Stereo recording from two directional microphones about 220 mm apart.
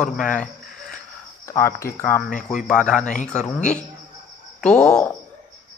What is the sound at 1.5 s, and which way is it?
Speech, 15° left (ahead or behind).